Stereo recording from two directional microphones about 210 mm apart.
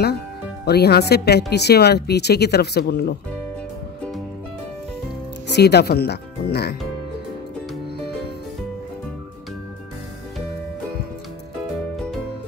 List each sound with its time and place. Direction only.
0.7 s speech: 50° left (ahead or behind)
5.5 s speech: 50° left (ahead or behind)